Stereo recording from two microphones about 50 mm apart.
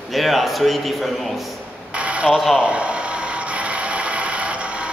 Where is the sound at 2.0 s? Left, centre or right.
Right.